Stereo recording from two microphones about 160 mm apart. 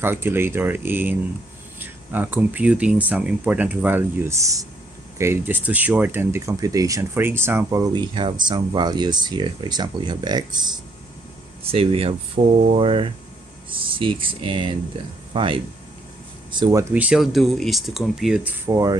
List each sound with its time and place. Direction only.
0.0 s speech: 15° right (ahead or behind)
11.6 s speech: 35° right (ahead or behind)
16.9 s speech: 5° right (ahead or behind)
18.7 s speech: 20° right (ahead or behind)